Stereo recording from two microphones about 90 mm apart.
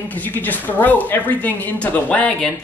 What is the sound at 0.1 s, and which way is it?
Speech, 20° left (ahead or behind).